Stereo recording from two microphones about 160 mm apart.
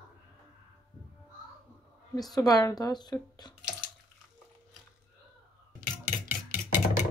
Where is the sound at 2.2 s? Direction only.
25° left (ahead or behind).